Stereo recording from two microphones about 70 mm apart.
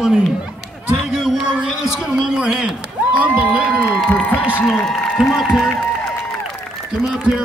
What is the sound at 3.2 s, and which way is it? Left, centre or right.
Crowd, centre.